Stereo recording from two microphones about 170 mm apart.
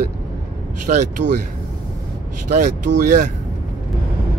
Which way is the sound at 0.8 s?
50° right (ahead or behind).